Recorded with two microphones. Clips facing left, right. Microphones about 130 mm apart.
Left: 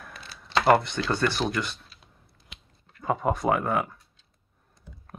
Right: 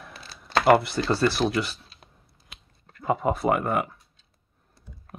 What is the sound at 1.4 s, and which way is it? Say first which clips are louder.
Speech: right 4 dB; 5° left (ahead or behind).